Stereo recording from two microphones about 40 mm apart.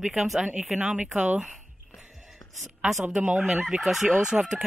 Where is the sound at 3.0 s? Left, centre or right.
Centre.